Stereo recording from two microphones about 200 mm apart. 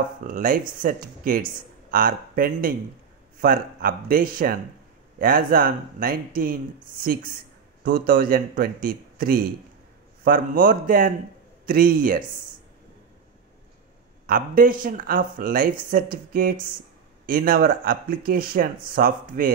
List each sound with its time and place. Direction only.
0.2 s speech: 45° right (ahead or behind)
14.2 s speech: 45° right (ahead or behind)